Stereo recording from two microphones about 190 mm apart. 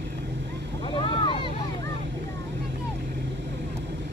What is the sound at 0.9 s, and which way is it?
Boat, 25° left (ahead or behind).